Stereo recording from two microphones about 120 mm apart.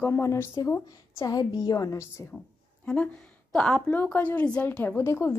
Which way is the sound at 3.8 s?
15° left (ahead or behind).